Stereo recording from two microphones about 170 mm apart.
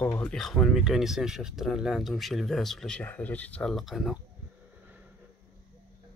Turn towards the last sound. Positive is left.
turn(degrees=0)  # may be behind; listen again after turning